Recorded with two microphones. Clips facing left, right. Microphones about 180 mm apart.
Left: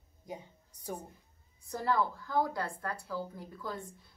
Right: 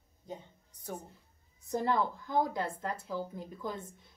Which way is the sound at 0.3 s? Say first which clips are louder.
Even; 10° left (ahead or behind).